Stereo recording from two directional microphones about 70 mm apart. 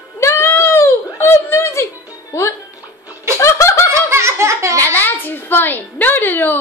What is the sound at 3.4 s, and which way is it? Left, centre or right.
Fowl, left.